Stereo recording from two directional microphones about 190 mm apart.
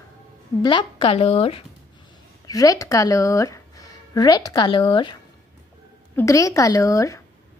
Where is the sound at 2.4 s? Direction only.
20° left (ahead or behind).